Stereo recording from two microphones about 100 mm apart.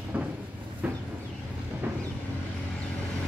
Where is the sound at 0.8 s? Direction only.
15° right (ahead or behind).